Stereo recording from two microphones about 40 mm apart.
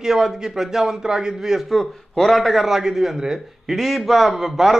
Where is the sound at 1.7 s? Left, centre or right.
Centre.